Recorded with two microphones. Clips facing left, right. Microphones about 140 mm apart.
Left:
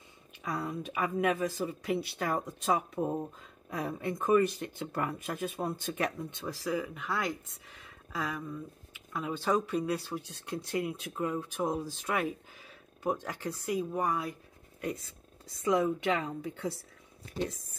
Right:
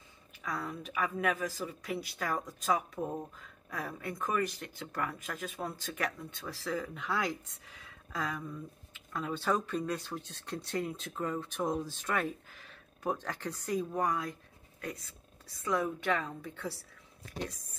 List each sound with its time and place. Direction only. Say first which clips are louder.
0.4 s speech: left 3 dB; 25° left (ahead or behind); by 14.3 s 5° left (ahead or behind)
15.6 s speech: left 5 dB; 20° left (ahead or behind)